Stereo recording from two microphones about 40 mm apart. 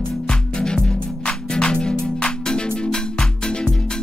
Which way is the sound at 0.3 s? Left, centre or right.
Left.